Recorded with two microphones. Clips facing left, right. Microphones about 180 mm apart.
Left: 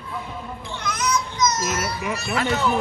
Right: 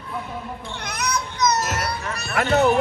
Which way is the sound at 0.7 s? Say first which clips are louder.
Left 3 dB; 65° right (ahead or behind).